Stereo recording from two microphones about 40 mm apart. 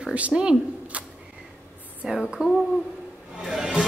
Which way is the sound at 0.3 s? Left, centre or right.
Right.